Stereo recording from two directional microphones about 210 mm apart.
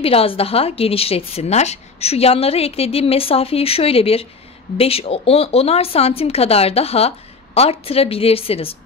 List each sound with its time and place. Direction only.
0.0 s a woman's voice: 25° left (ahead or behind)